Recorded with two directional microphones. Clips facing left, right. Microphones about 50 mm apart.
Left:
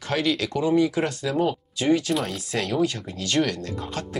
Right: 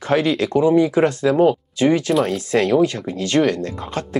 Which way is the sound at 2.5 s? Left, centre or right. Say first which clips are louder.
Right 7 dB; right.